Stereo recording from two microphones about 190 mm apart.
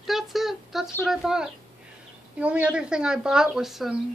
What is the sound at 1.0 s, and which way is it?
Speech, centre (ahead or behind).